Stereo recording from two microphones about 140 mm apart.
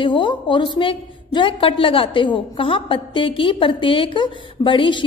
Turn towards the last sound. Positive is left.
turn(degrees=35)  # may be behind; listen again after turning